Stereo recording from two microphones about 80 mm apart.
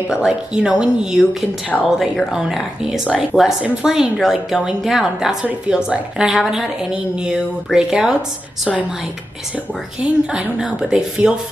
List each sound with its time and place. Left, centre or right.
0.1 s a woman's voice: centre
2.3 s a woman's voice: centre
10.0 s a woman's voice: centre